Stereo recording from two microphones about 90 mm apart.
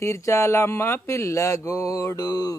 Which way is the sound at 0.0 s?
35° left (ahead or behind).